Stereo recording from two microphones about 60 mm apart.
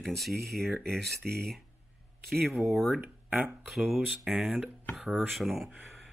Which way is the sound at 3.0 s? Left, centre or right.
Right.